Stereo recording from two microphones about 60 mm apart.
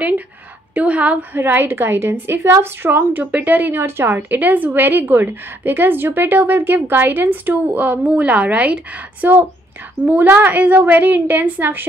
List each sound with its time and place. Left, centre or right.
0.7 s a woman's voice: right
1.3 s a woman's voice: right
3.8 s a woman's voice: right